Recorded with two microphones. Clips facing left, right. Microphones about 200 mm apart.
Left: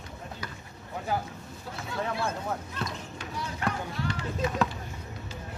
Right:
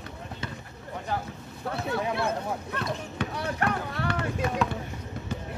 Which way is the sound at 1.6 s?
60° right (ahead or behind).